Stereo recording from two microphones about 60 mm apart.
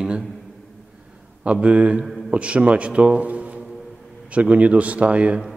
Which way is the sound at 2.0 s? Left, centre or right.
Centre.